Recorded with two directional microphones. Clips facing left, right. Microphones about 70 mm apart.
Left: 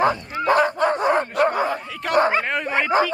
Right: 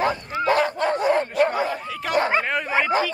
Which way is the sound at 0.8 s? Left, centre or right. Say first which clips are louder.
Left 1 dB; left.